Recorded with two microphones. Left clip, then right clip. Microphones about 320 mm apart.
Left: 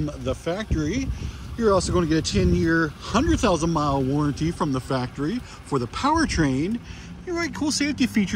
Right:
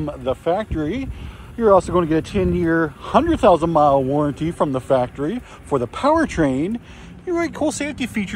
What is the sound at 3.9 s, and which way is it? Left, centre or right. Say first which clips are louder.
Speech: right 7 dB; right.